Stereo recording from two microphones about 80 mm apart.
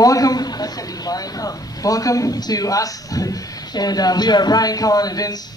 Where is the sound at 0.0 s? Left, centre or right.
Left.